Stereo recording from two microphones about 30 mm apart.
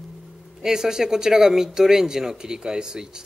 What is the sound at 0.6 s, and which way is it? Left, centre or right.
Speech, centre.